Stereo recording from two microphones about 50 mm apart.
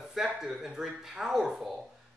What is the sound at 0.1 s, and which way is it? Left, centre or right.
A man's voice, centre.